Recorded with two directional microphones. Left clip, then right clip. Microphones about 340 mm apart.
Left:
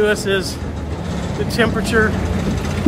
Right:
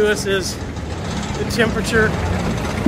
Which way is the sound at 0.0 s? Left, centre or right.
Centre.